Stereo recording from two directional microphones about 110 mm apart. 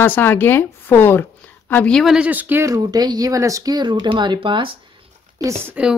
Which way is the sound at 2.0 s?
5° right (ahead or behind).